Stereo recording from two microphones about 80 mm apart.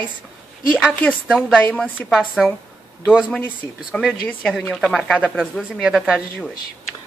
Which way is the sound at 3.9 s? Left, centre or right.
Centre.